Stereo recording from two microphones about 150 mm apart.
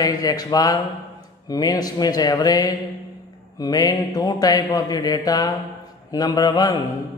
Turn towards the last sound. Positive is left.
turn(degrees=30)  # may be behind; listen again after turning